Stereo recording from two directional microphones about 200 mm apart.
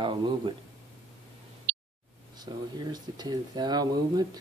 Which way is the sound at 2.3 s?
20° right (ahead or behind).